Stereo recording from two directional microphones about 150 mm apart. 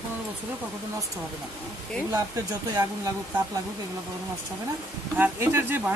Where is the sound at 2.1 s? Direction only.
20° right (ahead or behind).